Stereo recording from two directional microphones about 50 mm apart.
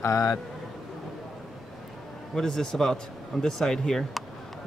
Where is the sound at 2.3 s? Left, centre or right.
Centre.